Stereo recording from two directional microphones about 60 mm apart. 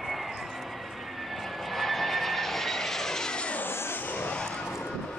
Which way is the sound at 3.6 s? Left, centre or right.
Left.